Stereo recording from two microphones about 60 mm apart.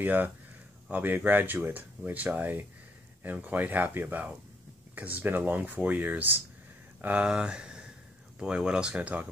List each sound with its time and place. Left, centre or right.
0.0 s speech: right
7.2 s speech: centre